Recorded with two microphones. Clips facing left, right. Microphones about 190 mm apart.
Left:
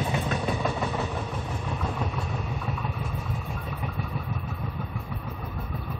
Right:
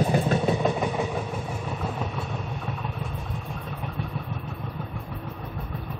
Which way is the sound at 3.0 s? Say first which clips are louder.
Even; centre (ahead or behind).